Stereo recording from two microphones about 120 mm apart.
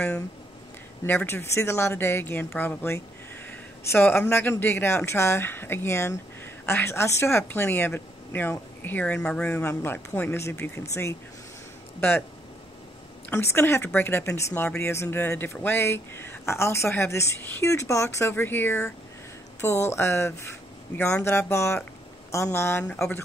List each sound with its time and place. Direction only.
1.0 s speech: 20° left (ahead or behind)
13.3 s speech: 20° left (ahead or behind)
22.8 s speech: 5° left (ahead or behind)